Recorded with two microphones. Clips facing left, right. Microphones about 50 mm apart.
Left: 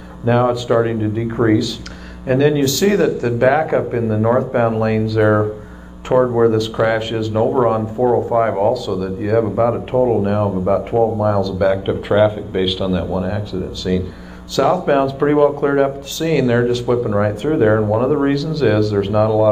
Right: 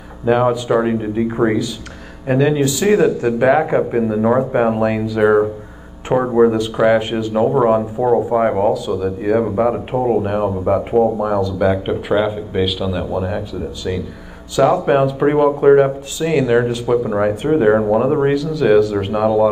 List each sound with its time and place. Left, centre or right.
0.2 s speech: centre
7.3 s speech: centre
8.7 s speech: centre